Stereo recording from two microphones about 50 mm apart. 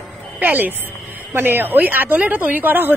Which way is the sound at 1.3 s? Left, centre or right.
Right.